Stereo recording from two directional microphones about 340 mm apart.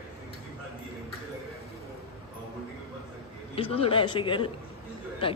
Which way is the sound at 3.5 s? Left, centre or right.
Centre.